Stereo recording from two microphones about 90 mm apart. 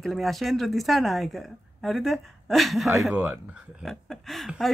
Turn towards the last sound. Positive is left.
turn(degrees=0)  # may be behind; listen again after turning